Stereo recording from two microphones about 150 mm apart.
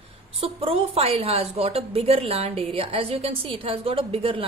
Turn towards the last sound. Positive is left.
turn(degrees=-35)  # may be behind; listen again after turning